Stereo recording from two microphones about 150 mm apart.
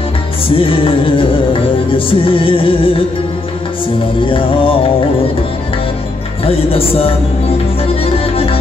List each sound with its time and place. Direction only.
0.6 s music: 35° left (ahead or behind)
4.3 s music: 35° left (ahead or behind)
6.4 s music: 40° left (ahead or behind)